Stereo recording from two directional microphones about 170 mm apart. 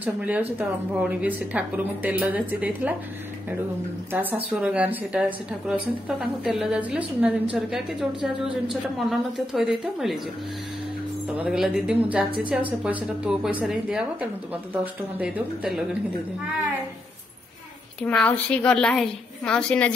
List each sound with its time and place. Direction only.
0.0 s speech: 10° right (ahead or behind)
4.1 s speech: 10° right (ahead or behind)
11.3 s speech: 5° right (ahead or behind)
18.0 s a woman's voice: 10° left (ahead or behind)